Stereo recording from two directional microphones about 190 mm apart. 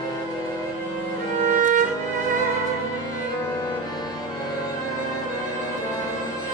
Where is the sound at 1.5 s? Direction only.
45° right (ahead or behind).